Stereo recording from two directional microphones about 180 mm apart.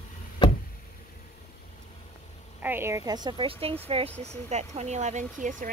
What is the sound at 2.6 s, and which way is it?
A woman's voice, 10° right (ahead or behind).